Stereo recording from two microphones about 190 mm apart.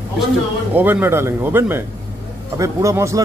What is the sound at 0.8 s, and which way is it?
A man's voice, 10° right (ahead or behind).